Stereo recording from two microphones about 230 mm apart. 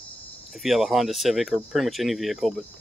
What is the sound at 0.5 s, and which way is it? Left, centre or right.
Speech, centre.